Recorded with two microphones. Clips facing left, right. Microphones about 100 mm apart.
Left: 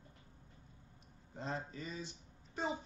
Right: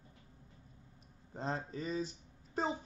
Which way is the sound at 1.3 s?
35° right (ahead or behind).